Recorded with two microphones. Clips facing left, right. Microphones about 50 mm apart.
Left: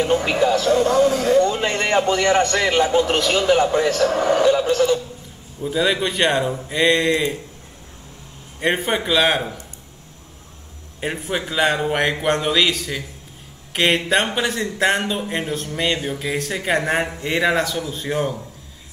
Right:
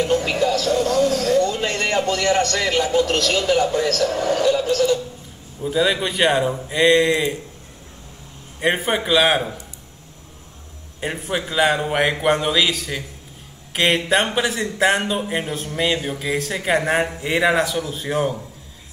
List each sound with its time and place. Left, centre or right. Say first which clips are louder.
0.0 s a man's voice: left 1 dB; centre
5.6 s speech: even; centre
8.5 s speech: even; centre
11.0 s speech: even; centre